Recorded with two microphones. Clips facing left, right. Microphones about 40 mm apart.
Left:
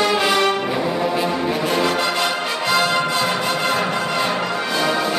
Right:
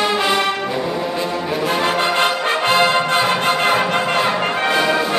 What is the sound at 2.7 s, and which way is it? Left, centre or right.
Music, right.